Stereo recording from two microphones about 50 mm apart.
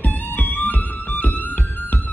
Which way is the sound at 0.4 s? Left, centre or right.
Left.